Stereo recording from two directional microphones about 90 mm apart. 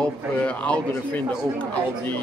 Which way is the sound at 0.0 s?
15° left (ahead or behind).